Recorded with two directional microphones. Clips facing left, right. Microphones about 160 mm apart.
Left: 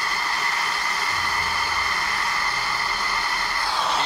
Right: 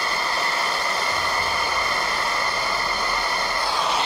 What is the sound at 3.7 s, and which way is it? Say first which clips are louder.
Vehicle: even; 5° right (ahead or behind).